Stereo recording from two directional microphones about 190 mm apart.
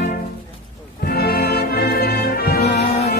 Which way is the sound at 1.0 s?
55° left (ahead or behind).